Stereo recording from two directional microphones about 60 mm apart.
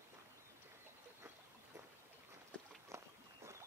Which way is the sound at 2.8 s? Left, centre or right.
Right.